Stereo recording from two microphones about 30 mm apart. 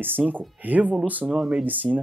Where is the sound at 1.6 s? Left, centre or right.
Right.